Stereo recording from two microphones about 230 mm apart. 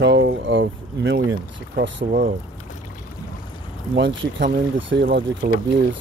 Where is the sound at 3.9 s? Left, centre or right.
Right.